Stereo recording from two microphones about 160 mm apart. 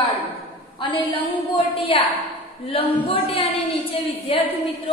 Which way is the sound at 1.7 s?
35° left (ahead or behind).